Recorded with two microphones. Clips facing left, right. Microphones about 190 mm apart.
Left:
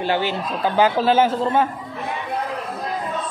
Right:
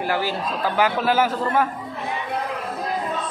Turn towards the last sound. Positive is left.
turn(degrees=25)  # may be behind; listen again after turning